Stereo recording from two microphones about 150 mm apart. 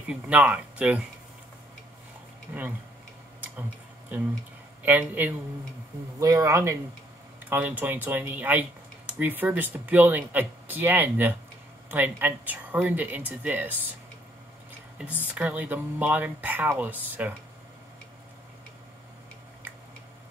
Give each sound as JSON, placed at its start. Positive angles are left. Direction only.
{"t": 0.1, "sound": "speech", "side_deg": -10}
{"t": 4.1, "sound": "speech", "side_deg": -10}
{"t": 15.2, "sound": "speech", "side_deg": -10}